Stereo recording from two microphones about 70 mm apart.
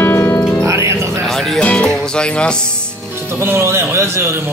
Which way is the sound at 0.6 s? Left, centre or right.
Right.